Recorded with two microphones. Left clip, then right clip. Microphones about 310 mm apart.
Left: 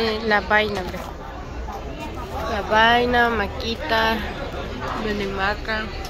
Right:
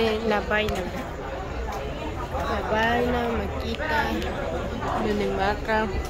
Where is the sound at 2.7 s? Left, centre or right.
Centre.